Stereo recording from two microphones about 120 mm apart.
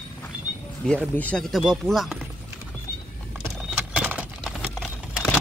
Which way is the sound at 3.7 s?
10° right (ahead or behind).